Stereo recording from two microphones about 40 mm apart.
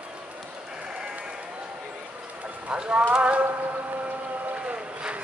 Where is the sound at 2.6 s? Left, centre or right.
Right.